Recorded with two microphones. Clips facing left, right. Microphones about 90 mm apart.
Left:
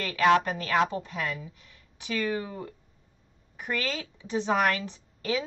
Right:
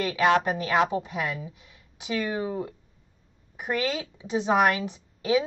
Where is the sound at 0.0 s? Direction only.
15° right (ahead or behind).